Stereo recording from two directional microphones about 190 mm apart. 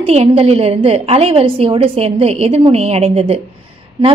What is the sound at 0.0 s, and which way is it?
A woman's voice, 35° right (ahead or behind).